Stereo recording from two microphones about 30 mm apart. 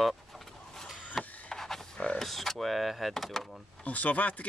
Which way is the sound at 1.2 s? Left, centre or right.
Centre.